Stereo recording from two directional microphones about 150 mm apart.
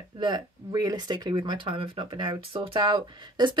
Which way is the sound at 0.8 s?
30° right (ahead or behind).